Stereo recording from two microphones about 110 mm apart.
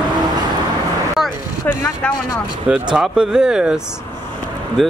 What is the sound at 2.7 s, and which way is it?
Speech, 5° right (ahead or behind).